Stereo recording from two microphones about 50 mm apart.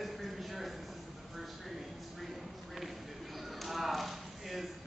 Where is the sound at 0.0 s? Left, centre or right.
Centre.